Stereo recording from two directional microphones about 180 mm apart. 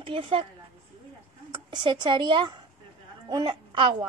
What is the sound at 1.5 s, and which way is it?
A woman's voice, 25° right (ahead or behind).